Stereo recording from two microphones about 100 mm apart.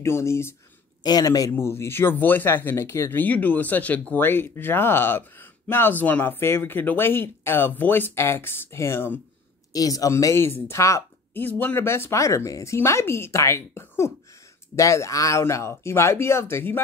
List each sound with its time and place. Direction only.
0.0 s speech: 25° left (ahead or behind)
1.0 s speech: 40° left (ahead or behind)
1.5 s speech: 25° left (ahead or behind)
9.7 s speech: 40° left (ahead or behind)
11.3 s speech: 20° left (ahead or behind)